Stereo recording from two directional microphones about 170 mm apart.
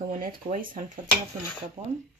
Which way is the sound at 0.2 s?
55° right (ahead or behind).